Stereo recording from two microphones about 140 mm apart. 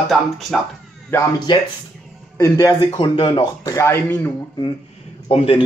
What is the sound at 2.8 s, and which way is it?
Speech, 40° left (ahead or behind).